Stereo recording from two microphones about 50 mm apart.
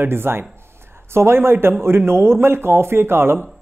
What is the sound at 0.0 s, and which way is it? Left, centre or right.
Speech, right.